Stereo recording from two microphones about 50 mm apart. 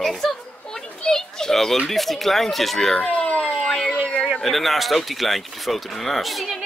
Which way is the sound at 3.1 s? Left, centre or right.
Centre.